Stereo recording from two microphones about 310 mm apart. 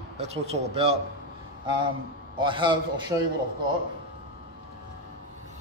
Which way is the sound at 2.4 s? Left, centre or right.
Centre.